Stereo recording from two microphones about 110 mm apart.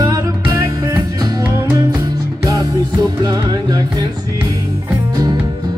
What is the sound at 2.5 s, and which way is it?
Music, 35° right (ahead or behind).